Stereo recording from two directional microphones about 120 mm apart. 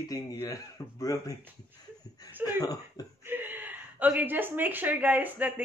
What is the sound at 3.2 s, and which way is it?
A woman's voice, 15° right (ahead or behind).